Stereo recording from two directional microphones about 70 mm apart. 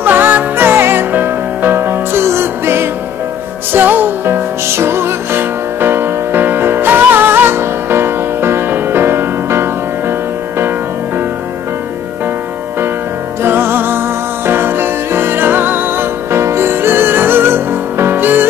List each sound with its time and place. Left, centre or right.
0.0 s music: right
3.7 s music: right
4.6 s music: right
13.4 s music: right